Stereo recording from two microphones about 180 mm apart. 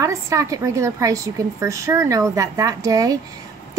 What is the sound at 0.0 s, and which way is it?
A woman's voice, 15° right (ahead or behind).